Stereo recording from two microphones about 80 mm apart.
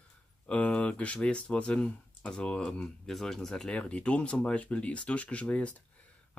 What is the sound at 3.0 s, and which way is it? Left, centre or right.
Speech, centre.